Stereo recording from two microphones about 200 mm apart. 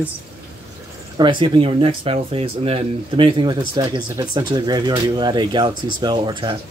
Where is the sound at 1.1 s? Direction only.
25° right (ahead or behind).